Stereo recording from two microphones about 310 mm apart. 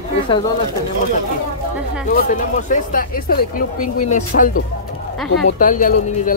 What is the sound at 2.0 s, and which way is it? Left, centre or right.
Speech, left.